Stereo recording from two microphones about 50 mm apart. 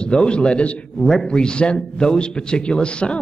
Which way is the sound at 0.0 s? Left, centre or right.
Centre.